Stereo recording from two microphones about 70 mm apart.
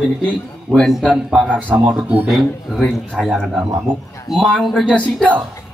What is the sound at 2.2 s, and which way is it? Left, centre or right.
Speech, centre.